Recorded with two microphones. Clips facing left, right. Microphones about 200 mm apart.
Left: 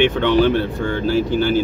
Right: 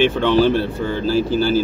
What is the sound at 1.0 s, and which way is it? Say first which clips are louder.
Speech: even; 60° left (ahead or behind).